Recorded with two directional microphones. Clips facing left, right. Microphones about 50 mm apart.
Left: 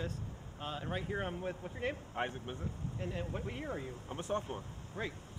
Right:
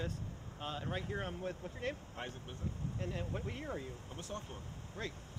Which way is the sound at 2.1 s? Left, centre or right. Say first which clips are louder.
Left 7 dB; left.